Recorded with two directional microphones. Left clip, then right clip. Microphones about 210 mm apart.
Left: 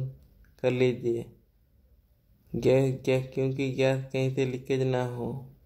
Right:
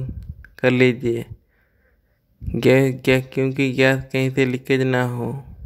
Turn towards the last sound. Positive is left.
turn(degrees=-25)  # may be behind; listen again after turning